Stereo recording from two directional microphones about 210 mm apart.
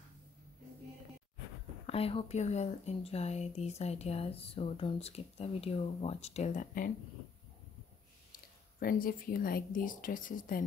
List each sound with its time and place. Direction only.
1.9 s speech: 25° left (ahead or behind)
8.7 s speech: 45° left (ahead or behind)